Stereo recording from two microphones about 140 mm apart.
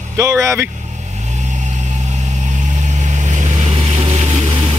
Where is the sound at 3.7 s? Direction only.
45° right (ahead or behind).